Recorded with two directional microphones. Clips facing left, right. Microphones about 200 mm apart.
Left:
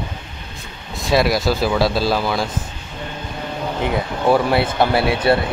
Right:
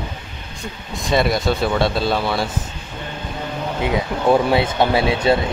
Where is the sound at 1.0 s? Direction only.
5° left (ahead or behind).